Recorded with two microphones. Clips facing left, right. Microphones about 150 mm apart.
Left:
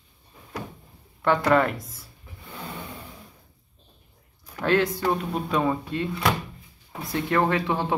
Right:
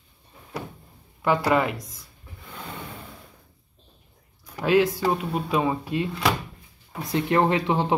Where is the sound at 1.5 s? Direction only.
5° right (ahead or behind).